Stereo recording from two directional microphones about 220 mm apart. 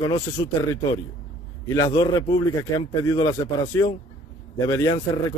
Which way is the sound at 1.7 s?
15° left (ahead or behind).